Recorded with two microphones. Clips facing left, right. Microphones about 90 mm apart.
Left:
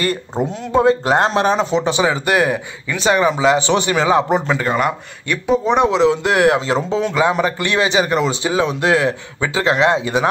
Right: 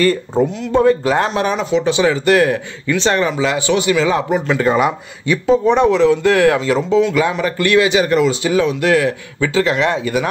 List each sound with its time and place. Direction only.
0.7 s speech: 20° left (ahead or behind)
1.1 s speech: 30° left (ahead or behind)
1.9 s a man's voice: 20° left (ahead or behind)
4.6 s speech: centre (ahead or behind)
5.7 s a man's voice: 20° left (ahead or behind)
7.2 s a man's voice: 25° left (ahead or behind)